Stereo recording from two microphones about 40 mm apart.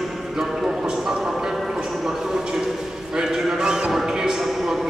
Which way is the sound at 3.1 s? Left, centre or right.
Centre.